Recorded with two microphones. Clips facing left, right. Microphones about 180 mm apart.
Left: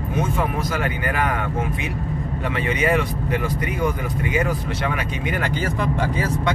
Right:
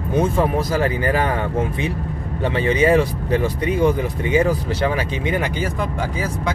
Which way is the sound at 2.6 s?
30° right (ahead or behind).